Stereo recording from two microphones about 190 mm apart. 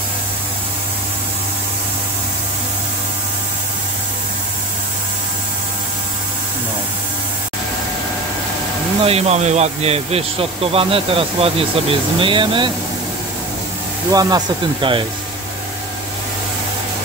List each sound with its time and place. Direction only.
9.0 s speech: 35° right (ahead or behind)
14.1 s speech: 25° right (ahead or behind)